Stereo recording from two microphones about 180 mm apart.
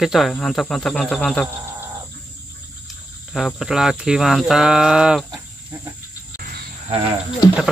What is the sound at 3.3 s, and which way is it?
Speech, centre (ahead or behind).